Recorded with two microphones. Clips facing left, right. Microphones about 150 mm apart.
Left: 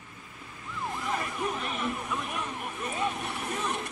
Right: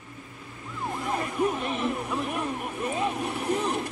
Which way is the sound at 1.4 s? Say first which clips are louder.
Right 6 dB; 20° right (ahead or behind).